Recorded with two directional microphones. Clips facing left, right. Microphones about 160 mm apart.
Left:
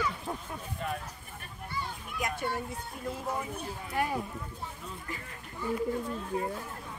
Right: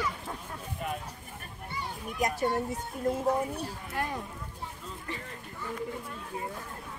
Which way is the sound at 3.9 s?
10° left (ahead or behind).